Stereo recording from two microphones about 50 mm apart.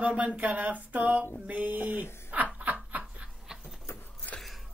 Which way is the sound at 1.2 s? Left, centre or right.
Right.